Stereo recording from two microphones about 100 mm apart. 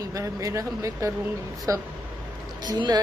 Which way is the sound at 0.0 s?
35° right (ahead or behind).